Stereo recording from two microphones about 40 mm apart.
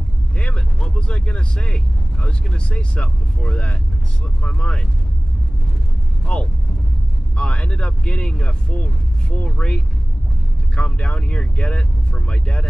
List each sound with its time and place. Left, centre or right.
0.4 s speech: left
6.3 s speech: left